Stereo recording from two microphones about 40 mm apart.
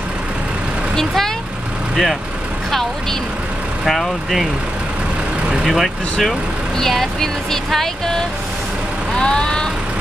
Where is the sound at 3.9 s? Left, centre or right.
Centre.